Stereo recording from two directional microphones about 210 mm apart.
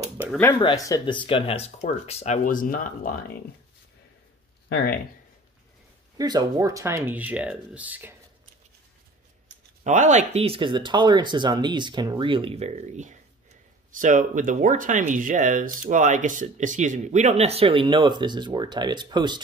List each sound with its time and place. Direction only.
0.4 s speech: 20° left (ahead or behind); by 3.2 s 40° left (ahead or behind)
4.6 s speech: 50° left (ahead or behind)
6.1 s speech: 20° right (ahead or behind)
9.8 s speech: 35° right (ahead or behind)